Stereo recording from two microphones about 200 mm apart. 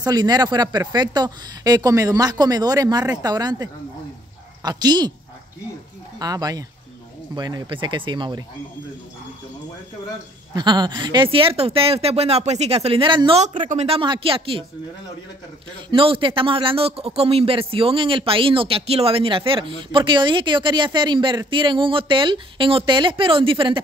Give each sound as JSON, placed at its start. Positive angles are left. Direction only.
{"t": 0.0, "sound": "speech", "side_deg": -20}
{"t": 6.1, "sound": "speech", "side_deg": -20}
{"t": 10.5, "sound": "speech", "side_deg": -20}
{"t": 15.9, "sound": "speech", "side_deg": -25}